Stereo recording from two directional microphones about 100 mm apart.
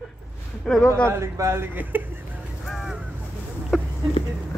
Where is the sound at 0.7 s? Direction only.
5° left (ahead or behind).